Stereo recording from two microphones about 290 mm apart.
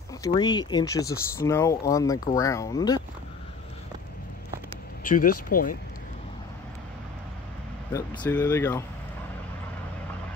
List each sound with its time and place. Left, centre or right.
0.2 s speech: centre
5.0 s speech: left
7.9 s speech: centre